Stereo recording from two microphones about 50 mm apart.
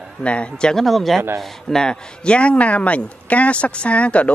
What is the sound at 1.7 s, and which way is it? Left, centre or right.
Speech, centre.